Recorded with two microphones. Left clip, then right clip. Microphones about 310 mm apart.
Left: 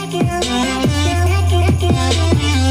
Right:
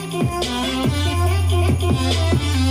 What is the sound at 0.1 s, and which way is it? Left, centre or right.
Music, left.